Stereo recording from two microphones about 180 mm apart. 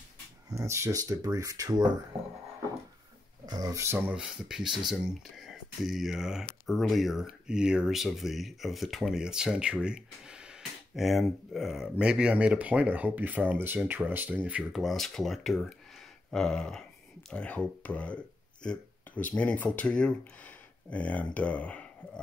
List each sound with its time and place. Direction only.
0.5 s speech: 15° right (ahead or behind)
3.4 s speech: 20° right (ahead or behind)
4.1 s speech: 5° right (ahead or behind)